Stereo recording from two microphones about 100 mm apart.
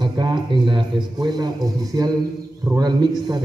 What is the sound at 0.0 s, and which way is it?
A man's voice, 45° right (ahead or behind).